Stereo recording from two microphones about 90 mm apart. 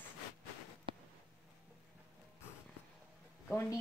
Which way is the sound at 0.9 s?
75° right (ahead or behind).